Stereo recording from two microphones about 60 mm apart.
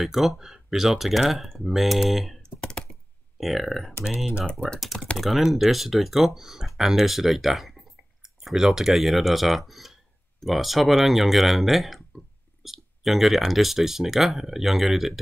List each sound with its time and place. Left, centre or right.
0.0 s speech: centre
2.6 s computer keyboard: centre
3.3 s speech: centre
4.0 s speech: centre
5.1 s speech: centre